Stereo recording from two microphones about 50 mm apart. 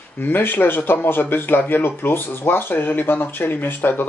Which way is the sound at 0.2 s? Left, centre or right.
Left.